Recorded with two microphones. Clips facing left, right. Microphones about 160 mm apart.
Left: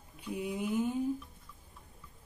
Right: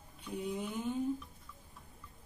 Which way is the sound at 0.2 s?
10° left (ahead or behind).